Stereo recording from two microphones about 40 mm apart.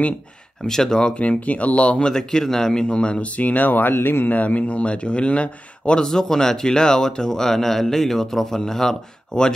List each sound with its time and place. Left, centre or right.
0.7 s speech: centre
1.1 s speech: left
2.1 s speech: centre; by 4.3 s left
4.3 s speech: left
6.0 s speech: centre